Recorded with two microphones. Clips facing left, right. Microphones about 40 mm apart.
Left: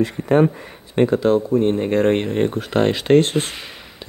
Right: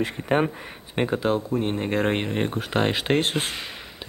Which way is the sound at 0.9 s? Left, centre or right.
Centre.